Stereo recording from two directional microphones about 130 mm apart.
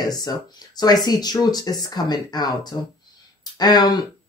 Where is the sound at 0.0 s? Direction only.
30° left (ahead or behind).